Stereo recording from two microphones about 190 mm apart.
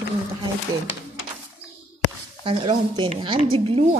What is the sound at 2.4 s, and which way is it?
Speech, 30° right (ahead or behind).